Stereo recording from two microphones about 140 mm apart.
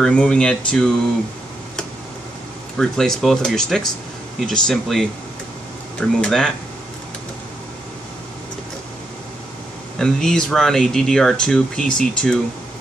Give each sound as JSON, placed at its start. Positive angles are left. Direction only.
{"t": 0.0, "sound": "speech", "side_deg": 5}
{"t": 2.8, "sound": "speech", "side_deg": 5}
{"t": 9.9, "sound": "speech", "side_deg": 5}